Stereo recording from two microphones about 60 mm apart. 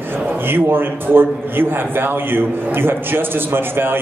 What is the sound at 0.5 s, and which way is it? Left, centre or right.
A man's voice, right.